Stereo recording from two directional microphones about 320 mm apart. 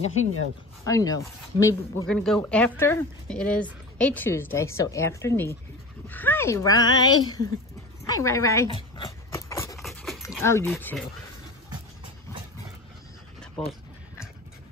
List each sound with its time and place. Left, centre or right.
0.1 s speech: left
0.8 s speech: centre
8.0 s dog: centre